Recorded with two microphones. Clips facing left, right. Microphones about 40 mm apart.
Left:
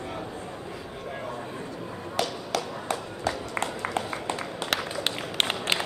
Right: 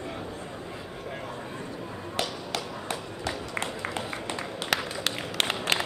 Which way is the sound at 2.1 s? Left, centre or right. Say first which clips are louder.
Left 3 dB; right.